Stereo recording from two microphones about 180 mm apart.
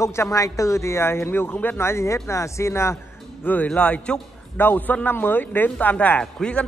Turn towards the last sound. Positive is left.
turn(degrees=5)  # may be behind; listen again after turning